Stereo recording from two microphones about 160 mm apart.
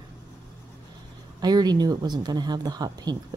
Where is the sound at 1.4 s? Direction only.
25° right (ahead or behind).